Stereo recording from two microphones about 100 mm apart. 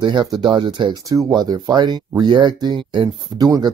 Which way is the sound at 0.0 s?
45° right (ahead or behind).